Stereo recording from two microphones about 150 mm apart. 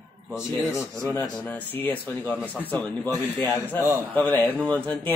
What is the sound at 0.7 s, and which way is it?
A man's voice, 20° left (ahead or behind).